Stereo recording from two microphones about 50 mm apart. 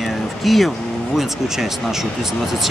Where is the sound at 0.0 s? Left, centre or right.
Centre.